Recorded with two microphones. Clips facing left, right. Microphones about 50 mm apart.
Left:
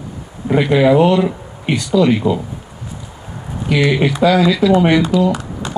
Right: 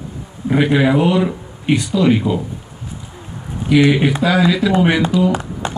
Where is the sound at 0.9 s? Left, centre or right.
Centre.